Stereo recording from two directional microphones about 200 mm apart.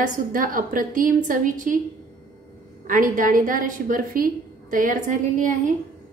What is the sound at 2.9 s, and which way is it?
A woman's voice, 40° right (ahead or behind).